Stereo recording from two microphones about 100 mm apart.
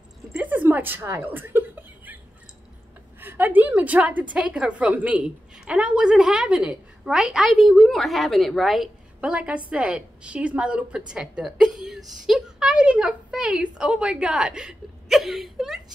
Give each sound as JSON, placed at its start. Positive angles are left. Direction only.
{"t": 0.4, "sound": "a sound", "side_deg": -15}
{"t": 1.0, "sound": "chuckle", "side_deg": -25}
{"t": 3.2, "sound": "a woman's voice", "side_deg": -20}